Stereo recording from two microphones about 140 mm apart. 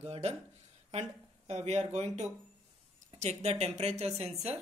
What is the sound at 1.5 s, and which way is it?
A woman's voice, 50° right (ahead or behind).